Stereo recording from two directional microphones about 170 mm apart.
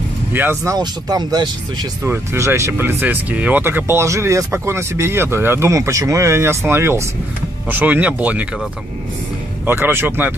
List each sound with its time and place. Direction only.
0.3 s speech: 10° right (ahead or behind)
0.7 s speech: 25° right (ahead or behind)
9.7 s speech: 15° right (ahead or behind)